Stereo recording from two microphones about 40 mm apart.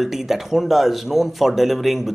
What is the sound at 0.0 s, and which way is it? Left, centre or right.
Speech, centre.